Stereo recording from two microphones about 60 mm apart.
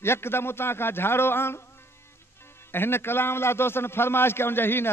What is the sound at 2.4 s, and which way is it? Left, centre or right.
Music, left.